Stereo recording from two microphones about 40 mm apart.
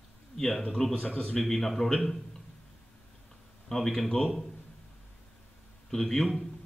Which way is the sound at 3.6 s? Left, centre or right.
Centre.